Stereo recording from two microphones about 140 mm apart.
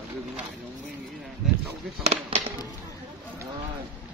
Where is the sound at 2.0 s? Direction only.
50° right (ahead or behind).